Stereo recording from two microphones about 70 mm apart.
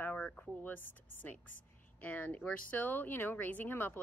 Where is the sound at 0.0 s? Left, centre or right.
Left.